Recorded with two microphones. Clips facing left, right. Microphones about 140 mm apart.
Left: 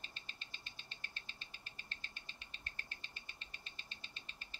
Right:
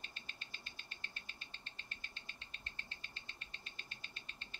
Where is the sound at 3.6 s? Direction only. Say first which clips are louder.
Right 1 dB; centre (ahead or behind).